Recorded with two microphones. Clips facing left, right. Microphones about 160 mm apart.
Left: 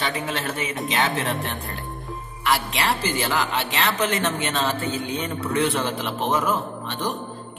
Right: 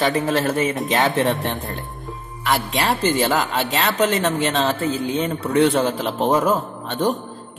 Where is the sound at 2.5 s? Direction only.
30° right (ahead or behind).